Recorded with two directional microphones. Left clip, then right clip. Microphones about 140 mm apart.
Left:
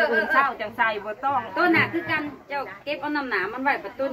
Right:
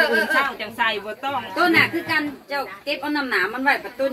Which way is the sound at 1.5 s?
50° right (ahead or behind).